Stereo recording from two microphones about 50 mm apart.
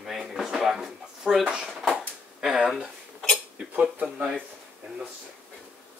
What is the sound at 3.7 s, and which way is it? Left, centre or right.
Speech, right.